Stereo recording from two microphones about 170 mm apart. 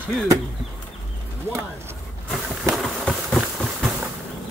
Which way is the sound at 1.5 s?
15° right (ahead or behind).